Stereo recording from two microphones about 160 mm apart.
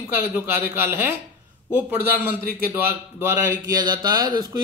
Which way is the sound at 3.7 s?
25° right (ahead or behind).